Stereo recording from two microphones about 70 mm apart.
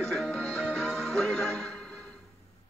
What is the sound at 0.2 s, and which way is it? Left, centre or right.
Music, centre.